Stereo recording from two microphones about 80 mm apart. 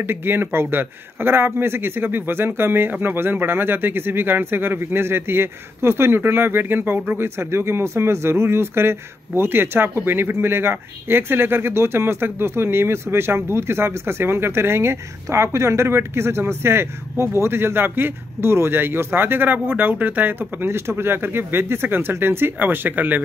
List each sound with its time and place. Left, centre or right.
0.0 s a man's voice: right